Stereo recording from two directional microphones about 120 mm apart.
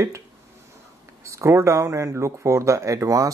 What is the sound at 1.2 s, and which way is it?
Speech, 25° right (ahead or behind).